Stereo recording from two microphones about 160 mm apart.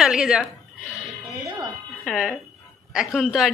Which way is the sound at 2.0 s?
Centre (ahead or behind).